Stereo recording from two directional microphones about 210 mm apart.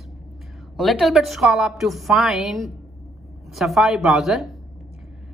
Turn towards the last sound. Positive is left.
turn(degrees=0)  # may be behind; listen again after turning